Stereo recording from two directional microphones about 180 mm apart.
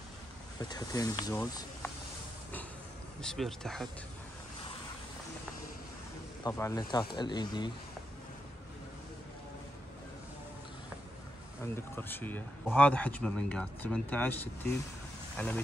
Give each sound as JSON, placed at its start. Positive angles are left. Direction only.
{"t": 0.6, "sound": "speech", "side_deg": 20}
{"t": 3.2, "sound": "speech", "side_deg": 0}
{"t": 6.4, "sound": "speech", "side_deg": 20}
{"t": 11.6, "sound": "speech", "side_deg": 15}